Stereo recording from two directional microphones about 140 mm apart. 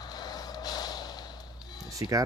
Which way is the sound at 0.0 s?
30° left (ahead or behind).